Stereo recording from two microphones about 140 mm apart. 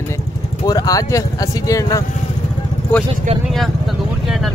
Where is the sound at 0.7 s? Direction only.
25° left (ahead or behind).